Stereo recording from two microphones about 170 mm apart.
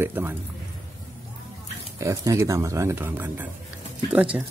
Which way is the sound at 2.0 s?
20° right (ahead or behind).